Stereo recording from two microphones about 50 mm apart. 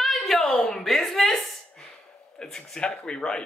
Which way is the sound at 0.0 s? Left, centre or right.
Centre.